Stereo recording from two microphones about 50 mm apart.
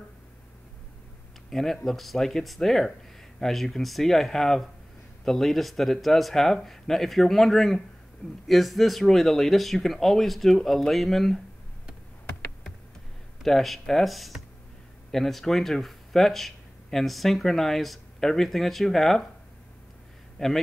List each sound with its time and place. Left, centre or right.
1.5 s speech: centre
13.4 s speech: centre
20.3 s a man's voice: centre